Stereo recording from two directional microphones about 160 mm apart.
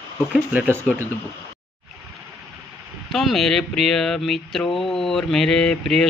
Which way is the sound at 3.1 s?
Centre (ahead or behind).